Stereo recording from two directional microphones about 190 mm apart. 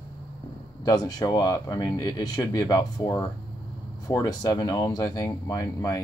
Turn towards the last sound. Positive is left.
turn(degrees=20)  # may be behind; listen again after turning